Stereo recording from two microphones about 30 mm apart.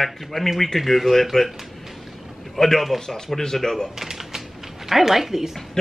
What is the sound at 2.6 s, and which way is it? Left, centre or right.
Speech, centre.